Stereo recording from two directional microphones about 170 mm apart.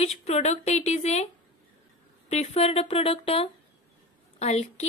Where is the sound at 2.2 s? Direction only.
40° left (ahead or behind).